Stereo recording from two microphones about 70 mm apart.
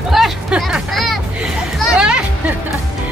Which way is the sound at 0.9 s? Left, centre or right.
Centre.